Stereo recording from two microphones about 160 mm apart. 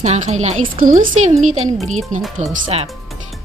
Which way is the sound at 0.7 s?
60° right (ahead or behind).